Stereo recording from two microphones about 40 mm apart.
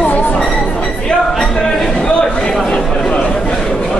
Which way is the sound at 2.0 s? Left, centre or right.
Centre.